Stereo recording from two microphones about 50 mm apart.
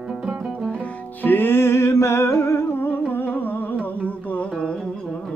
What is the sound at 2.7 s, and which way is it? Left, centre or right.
Music, left.